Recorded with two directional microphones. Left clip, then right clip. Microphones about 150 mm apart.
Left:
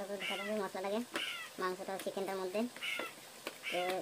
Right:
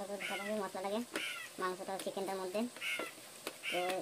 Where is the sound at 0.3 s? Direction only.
Centre (ahead or behind).